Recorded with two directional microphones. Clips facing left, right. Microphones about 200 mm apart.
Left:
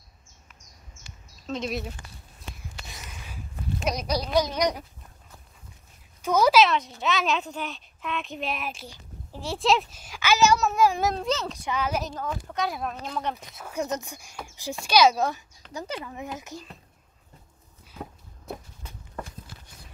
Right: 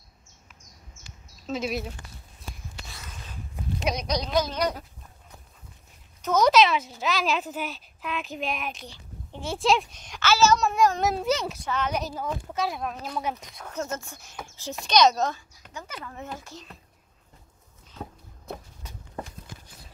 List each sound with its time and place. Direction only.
1.4 s speech: 5° right (ahead or behind)
2.9 s a sound: 15° left (ahead or behind)
3.8 s speech: centre (ahead or behind)
6.2 s speech: 10° left (ahead or behind)
10.6 s a child's voice: centre (ahead or behind)
11.6 s speech: 10° left (ahead or behind)
12.2 s speech: 10° right (ahead or behind)
13.6 s speech: 10° left (ahead or behind)
17.9 s a sound: 10° left (ahead or behind)